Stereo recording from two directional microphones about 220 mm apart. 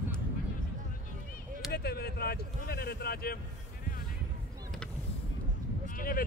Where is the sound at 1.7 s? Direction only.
45° left (ahead or behind).